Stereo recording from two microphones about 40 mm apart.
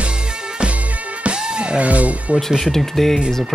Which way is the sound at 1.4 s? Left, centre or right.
Right.